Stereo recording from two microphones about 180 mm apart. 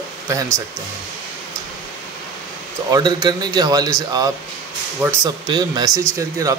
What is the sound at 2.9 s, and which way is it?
Speech, 20° right (ahead or behind).